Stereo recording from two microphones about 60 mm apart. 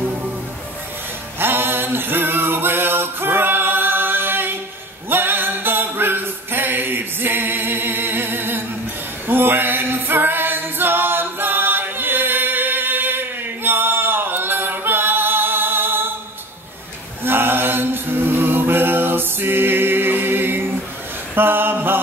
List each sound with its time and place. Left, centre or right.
1.4 s music: right
5.1 s a sound: right
9.3 s a capella: right
17.2 s mantra: right
21.4 s a sound: right
21.7 s mantra: right